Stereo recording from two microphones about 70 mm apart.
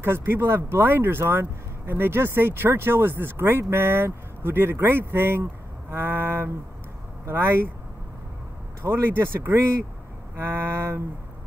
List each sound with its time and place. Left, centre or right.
0.0 s speech: right
8.8 s speech: right